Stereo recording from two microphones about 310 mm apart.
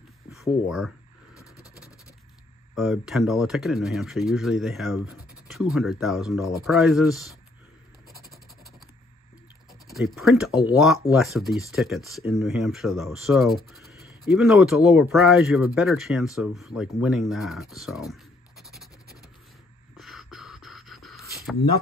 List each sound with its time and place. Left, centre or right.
0.3 s speech: centre
1.3 s coin: centre
2.7 s speech: centre
9.8 s speech: centre
20.0 s beatboxing: centre
21.3 s a sound: centre